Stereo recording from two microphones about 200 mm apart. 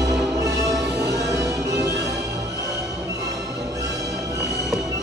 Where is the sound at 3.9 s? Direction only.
Centre (ahead or behind).